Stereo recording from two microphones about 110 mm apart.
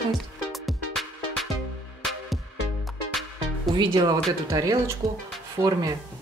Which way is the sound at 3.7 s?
40° right (ahead or behind).